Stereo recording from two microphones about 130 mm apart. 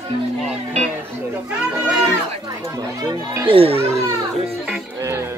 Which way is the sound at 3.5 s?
45° right (ahead or behind).